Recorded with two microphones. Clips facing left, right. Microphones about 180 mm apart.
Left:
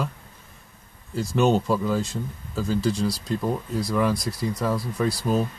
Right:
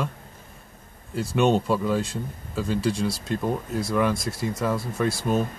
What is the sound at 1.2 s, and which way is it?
Speech, centre (ahead or behind).